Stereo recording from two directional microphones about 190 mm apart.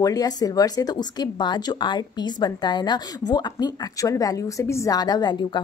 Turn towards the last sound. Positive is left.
turn(degrees=20)  # may be behind; listen again after turning